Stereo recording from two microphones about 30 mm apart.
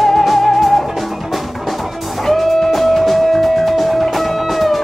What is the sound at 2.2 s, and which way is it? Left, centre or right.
Music, centre.